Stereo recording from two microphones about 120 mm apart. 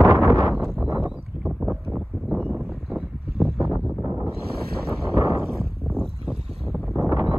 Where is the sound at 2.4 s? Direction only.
5° right (ahead or behind).